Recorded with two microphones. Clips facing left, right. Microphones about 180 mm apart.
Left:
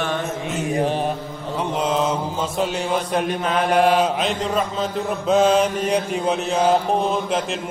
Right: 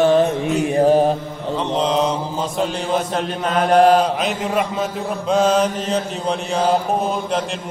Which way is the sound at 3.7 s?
45° right (ahead or behind).